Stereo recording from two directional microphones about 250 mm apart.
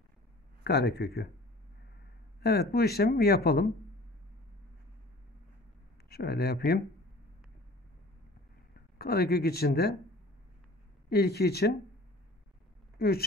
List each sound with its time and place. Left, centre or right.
0.7 s speech: left
2.4 s speech: left
6.0 s speech: left
8.9 s speech: left
11.1 s speech: left
13.0 s speech: left